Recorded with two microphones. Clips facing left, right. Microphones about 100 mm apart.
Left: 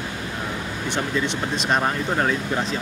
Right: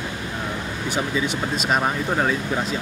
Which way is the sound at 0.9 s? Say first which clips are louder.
Right 1 dB; 5° right (ahead or behind).